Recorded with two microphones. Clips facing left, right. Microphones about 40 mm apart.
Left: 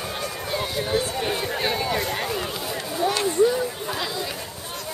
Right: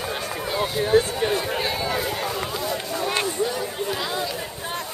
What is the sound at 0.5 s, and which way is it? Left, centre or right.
Speech, centre.